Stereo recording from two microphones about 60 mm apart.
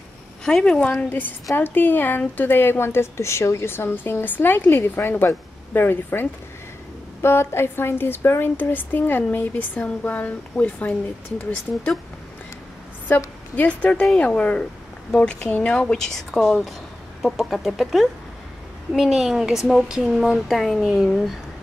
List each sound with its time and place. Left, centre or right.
0.5 s speech: centre
13.6 s speech: left; by 21.4 s centre